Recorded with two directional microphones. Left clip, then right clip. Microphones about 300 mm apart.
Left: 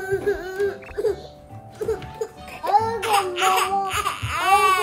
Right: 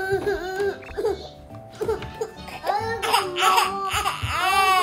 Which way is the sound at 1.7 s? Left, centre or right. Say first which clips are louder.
Even; centre.